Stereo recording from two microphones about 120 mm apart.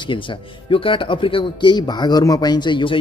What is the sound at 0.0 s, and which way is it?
Speech, 45° left (ahead or behind).